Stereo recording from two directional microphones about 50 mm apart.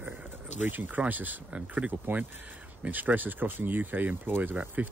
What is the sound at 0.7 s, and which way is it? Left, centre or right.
Speech, right.